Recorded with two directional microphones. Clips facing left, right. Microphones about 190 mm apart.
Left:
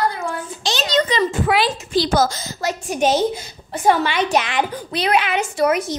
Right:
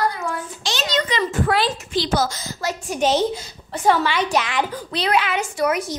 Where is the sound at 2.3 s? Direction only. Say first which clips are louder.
Left 2 dB; 20° left (ahead or behind).